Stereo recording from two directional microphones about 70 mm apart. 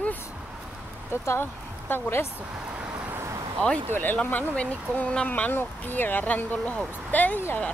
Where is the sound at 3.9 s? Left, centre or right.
Left.